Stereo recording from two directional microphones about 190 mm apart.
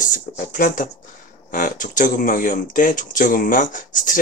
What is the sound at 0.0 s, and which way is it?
Speech, 45° left (ahead or behind).